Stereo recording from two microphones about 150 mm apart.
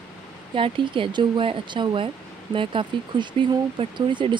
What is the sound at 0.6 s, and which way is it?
Speech, 35° right (ahead or behind).